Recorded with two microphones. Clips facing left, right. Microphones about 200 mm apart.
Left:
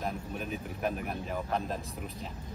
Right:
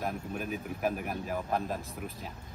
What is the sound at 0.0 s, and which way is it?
Speech, 5° right (ahead or behind).